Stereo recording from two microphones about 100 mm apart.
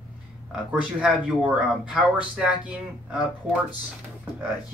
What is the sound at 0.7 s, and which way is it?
Speech, 10° right (ahead or behind).